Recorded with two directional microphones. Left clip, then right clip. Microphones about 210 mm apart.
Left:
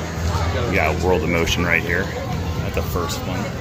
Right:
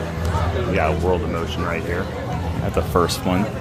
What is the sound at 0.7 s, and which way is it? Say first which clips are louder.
Speech: left 1 dB; 5° left (ahead or behind).